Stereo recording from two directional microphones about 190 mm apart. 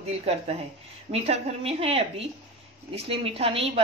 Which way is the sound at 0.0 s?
35° right (ahead or behind).